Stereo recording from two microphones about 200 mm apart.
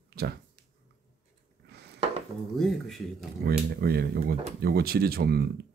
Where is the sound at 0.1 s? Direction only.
50° right (ahead or behind).